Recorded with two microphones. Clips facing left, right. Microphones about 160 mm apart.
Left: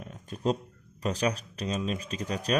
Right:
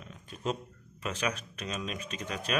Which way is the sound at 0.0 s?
45° left (ahead or behind).